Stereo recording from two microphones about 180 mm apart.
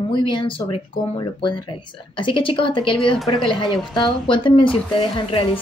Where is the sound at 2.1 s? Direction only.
30° left (ahead or behind).